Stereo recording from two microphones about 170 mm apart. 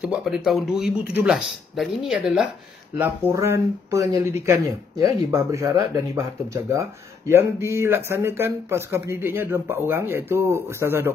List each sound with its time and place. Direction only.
0.0 s speech: 5° right (ahead or behind)
3.0 s speech: 15° right (ahead or behind)